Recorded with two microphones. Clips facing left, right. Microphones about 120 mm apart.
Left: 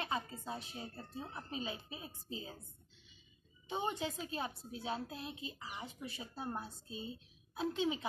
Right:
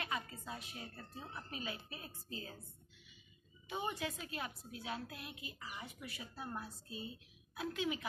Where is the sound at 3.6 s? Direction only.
25° left (ahead or behind).